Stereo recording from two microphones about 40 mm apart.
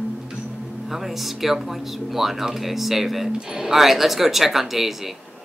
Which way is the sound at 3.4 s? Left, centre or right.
Centre.